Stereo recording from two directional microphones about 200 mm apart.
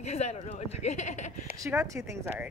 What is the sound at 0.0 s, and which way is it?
Speech, 35° left (ahead or behind).